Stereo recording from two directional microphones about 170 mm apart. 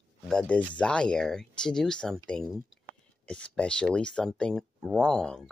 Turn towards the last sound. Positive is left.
turn(degrees=5)  # may be behind; listen again after turning